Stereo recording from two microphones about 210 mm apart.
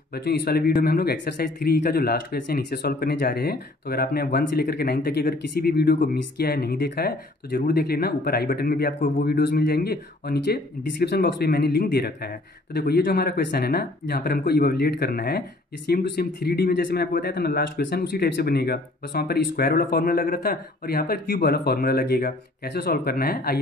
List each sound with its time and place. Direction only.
0.1 s speech: 50° left (ahead or behind)